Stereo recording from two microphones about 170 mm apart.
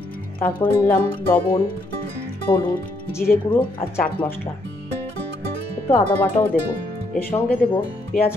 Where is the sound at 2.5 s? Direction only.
10° left (ahead or behind).